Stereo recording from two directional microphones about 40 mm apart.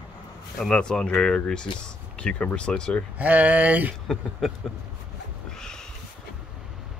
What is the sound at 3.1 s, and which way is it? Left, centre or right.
Speech, right.